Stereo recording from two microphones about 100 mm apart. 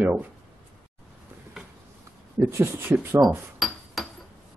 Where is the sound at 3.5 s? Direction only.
Centre (ahead or behind).